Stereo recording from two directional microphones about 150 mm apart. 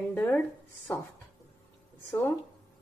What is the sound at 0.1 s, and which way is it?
Speech, 10° left (ahead or behind).